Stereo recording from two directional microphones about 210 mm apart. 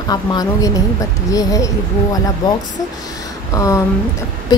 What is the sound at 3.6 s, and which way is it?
Speech, 15° left (ahead or behind).